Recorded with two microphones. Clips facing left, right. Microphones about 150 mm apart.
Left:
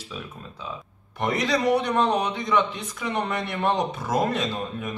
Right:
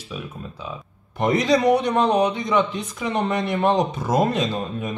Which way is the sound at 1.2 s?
20° right (ahead or behind).